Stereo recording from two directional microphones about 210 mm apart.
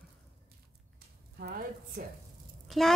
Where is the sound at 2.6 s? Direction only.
Centre (ahead or behind).